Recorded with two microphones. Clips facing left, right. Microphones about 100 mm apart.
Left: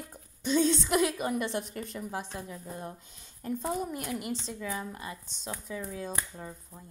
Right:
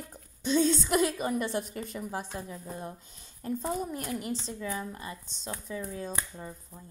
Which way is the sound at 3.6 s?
10° left (ahead or behind).